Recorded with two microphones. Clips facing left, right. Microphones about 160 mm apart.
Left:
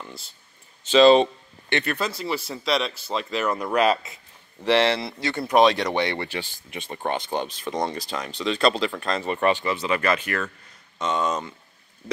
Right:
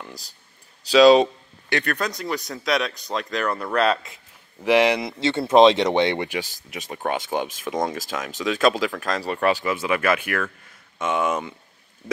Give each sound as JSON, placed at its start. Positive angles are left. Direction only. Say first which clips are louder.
{"t": 0.9, "sound": "speech", "louder": "right 1 dB", "side_deg": -5}
{"t": 4.6, "sound": "speech", "louder": "right 2 dB", "side_deg": -15}
{"t": 6.7, "sound": "speech", "louder": "right 1 dB", "side_deg": -5}